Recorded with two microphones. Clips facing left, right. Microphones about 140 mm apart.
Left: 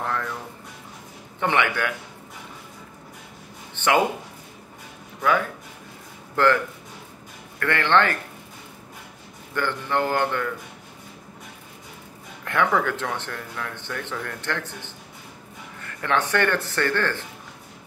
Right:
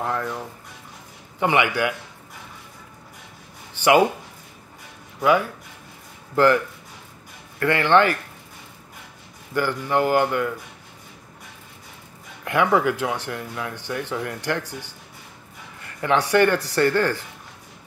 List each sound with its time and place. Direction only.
0.0 s music: 20° right (ahead or behind)
1.4 s speech: 10° right (ahead or behind)
6.3 s speech: 10° right (ahead or behind)
7.6 s speech: 10° right (ahead or behind)
9.5 s speech: 10° right (ahead or behind)
12.4 s speech: 10° right (ahead or behind)
16.0 s speech: 15° right (ahead or behind)